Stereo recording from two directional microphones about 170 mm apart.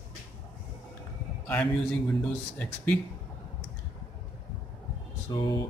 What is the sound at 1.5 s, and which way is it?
Speech, 10° left (ahead or behind).